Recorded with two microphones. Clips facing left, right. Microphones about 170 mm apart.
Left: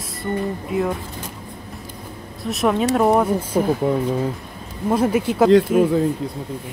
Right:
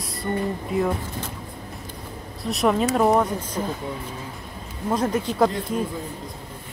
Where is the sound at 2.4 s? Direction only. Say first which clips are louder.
Left 2 dB; centre (ahead or behind).